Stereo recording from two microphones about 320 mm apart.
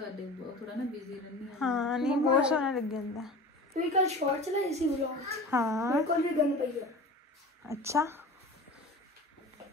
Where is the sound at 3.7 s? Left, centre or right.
Right.